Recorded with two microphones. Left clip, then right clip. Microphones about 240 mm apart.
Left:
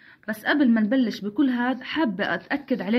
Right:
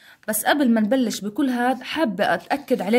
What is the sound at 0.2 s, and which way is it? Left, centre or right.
A woman's voice, right.